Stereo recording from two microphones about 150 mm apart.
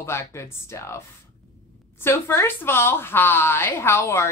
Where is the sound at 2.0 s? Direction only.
15° left (ahead or behind).